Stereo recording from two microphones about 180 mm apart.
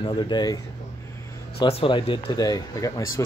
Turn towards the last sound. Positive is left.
turn(degrees=15)  # may be behind; listen again after turning